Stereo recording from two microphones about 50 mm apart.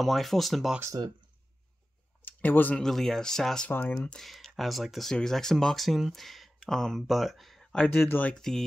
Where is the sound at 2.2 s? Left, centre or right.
Left.